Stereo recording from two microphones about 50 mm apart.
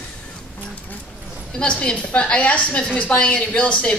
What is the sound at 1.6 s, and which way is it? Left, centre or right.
A woman's voice, left.